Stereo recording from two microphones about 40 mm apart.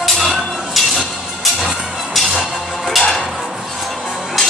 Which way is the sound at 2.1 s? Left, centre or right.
Centre.